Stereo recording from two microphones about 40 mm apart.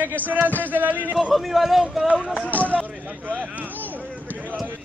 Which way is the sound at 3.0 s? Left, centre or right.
Right.